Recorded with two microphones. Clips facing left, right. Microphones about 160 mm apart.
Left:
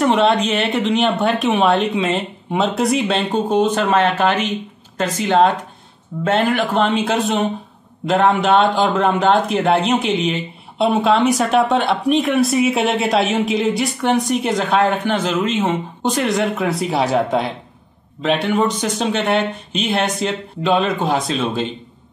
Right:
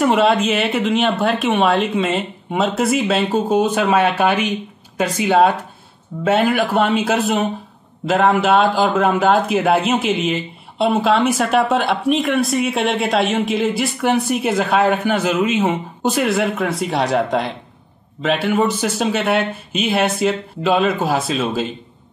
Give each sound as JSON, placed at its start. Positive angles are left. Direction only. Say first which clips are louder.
{"t": 0.0, "sound": "a man's voice", "louder": "even", "side_deg": -5}